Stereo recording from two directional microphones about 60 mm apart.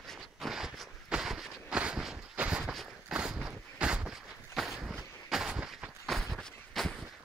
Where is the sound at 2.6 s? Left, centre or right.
Centre.